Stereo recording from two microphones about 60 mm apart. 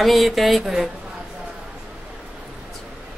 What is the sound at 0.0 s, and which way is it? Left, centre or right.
Speech, centre.